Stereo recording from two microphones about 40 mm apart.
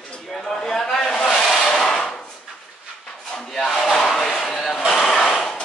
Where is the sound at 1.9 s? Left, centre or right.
Left.